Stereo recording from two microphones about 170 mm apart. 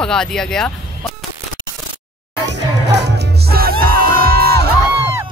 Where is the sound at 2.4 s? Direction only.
90° right; by 4.7 s 65° right (ahead or behind).